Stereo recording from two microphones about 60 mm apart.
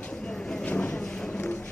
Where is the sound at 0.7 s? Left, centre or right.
Left.